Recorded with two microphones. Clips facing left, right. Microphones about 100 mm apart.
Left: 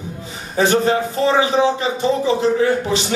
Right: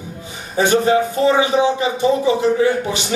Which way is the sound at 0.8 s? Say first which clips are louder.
Right 2 dB; 15° right (ahead or behind).